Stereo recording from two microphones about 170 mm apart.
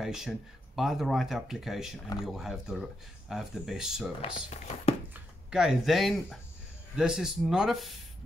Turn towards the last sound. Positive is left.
turn(degrees=0)  # may be behind; listen again after turning